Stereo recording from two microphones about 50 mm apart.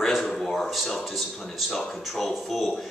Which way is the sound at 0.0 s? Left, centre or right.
Centre.